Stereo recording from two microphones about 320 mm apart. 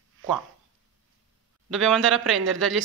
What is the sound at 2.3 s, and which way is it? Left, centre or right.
Speech, right.